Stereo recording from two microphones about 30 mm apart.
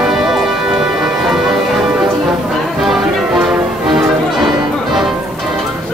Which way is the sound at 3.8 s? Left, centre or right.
Centre.